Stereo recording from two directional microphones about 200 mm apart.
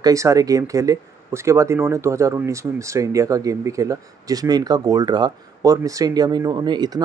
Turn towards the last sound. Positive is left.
turn(degrees=-20)  # may be behind; listen again after turning